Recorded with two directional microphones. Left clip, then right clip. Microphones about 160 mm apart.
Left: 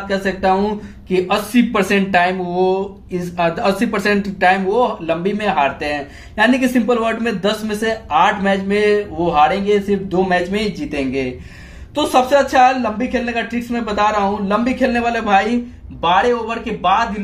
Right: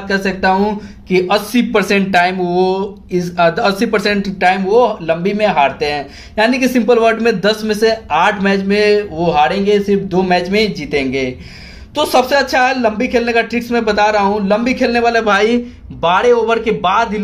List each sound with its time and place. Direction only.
0.1 s speech: 30° right (ahead or behind); by 17.1 s 50° right (ahead or behind)